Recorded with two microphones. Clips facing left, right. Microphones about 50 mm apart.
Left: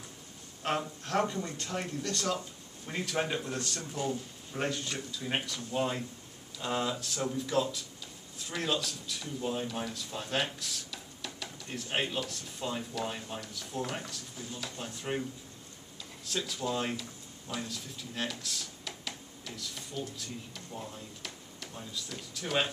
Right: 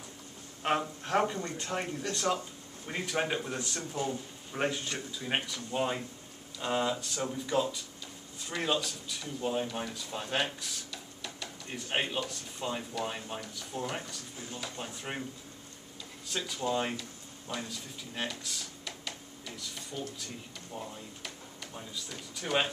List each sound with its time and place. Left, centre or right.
0.6 s speech: centre
16.3 s speech: centre